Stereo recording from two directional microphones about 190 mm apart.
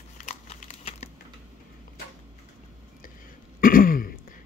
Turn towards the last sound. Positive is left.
turn(degrees=50)  # may be behind; listen again after turning